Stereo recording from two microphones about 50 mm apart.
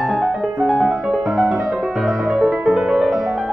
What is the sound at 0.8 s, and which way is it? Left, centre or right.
Music, right.